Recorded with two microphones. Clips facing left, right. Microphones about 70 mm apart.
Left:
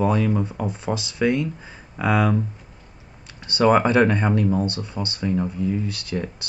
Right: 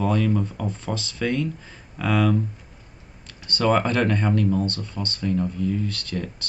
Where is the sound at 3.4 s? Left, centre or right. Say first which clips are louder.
Left 4 dB; centre.